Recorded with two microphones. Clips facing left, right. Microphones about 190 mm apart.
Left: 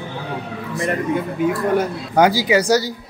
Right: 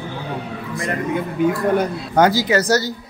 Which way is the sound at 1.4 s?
10° left (ahead or behind).